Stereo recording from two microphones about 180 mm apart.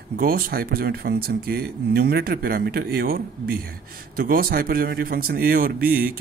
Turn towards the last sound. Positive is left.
turn(degrees=-55)  # may be behind; listen again after turning